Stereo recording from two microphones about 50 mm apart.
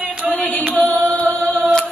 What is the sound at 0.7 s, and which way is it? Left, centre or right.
Singing, left.